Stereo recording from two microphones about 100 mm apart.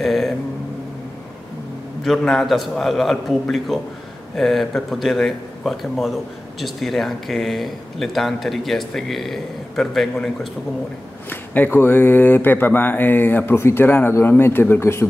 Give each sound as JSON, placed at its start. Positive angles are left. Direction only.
{"t": 0.0, "sound": "a sound", "side_deg": 0}
{"t": 2.0, "sound": "speech", "side_deg": 0}
{"t": 11.2, "sound": "speech", "side_deg": 20}